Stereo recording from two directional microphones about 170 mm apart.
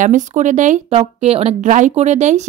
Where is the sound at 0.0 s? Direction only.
45° right (ahead or behind).